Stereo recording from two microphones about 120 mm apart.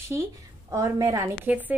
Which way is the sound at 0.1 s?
25° right (ahead or behind).